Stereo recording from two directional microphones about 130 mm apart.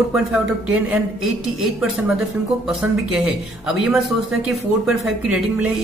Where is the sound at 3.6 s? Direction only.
5° right (ahead or behind).